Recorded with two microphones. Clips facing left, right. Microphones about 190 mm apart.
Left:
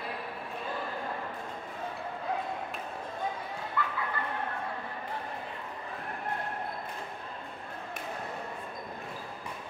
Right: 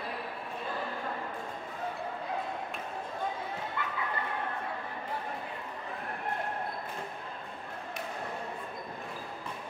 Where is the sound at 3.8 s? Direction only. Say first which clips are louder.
Left 6 dB; 20° right (ahead or behind).